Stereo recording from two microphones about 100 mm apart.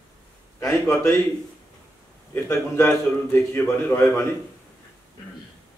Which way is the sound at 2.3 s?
25° left (ahead or behind).